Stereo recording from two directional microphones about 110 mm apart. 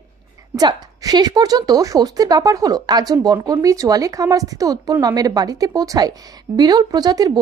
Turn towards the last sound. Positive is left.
turn(degrees=-35)  # may be behind; listen again after turning